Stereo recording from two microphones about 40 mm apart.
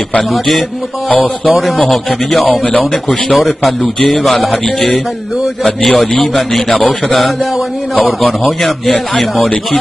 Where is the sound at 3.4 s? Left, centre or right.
Centre.